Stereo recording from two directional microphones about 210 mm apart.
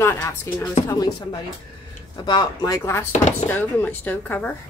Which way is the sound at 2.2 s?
20° left (ahead or behind).